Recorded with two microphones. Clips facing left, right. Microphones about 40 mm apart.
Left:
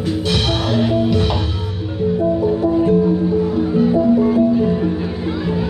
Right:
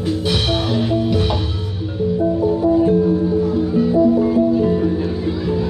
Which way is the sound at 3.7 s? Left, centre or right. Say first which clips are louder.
Even; centre.